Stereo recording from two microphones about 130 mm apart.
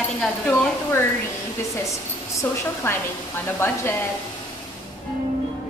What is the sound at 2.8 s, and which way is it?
A woman's voice, 20° left (ahead or behind).